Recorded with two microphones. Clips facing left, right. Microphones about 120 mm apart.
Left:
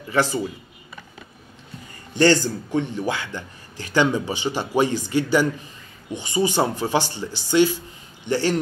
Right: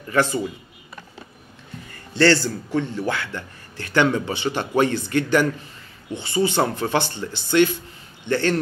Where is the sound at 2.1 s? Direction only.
15° left (ahead or behind).